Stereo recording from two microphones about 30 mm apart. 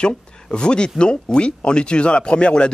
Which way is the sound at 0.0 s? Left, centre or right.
Left.